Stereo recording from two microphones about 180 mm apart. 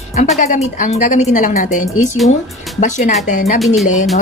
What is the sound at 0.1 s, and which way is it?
A woman's voice, 40° left (ahead or behind).